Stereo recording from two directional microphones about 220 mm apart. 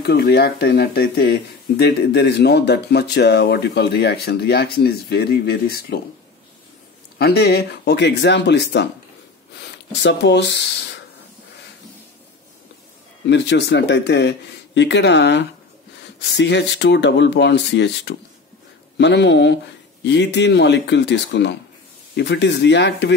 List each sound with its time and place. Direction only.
0.0 s speech: 50° left (ahead or behind)
7.2 s speech: 45° left (ahead or behind)
13.3 s speech: 50° left (ahead or behind)